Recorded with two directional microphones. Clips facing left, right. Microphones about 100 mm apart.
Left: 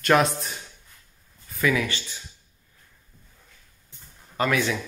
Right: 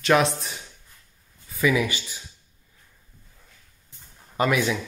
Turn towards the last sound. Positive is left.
turn(degrees=-15)  # may be behind; listen again after turning